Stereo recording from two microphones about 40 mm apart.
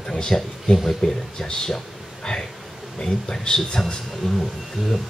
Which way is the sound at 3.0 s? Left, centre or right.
Centre.